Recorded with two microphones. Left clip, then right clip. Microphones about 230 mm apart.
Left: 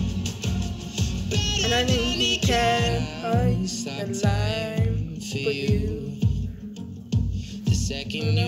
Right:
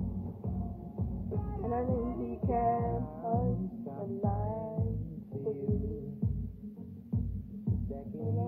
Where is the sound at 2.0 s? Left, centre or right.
Left.